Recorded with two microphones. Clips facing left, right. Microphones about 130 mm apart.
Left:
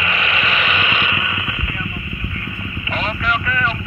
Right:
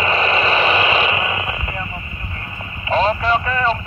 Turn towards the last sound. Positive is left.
turn(degrees=-30)  # may be behind; listen again after turning